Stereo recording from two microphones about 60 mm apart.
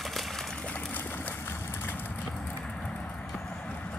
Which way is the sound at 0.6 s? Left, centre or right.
Left.